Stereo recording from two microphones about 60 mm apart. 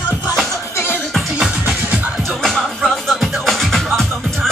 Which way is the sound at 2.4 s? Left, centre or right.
Centre.